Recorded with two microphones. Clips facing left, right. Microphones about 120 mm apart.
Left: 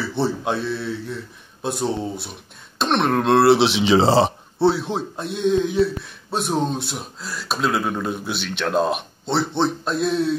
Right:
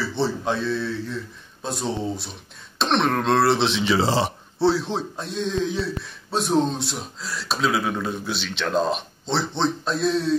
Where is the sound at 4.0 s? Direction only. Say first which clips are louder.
Left 6 dB; 30° left (ahead or behind).